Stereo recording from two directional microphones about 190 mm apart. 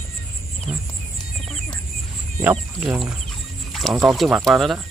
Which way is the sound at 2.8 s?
5° right (ahead or behind).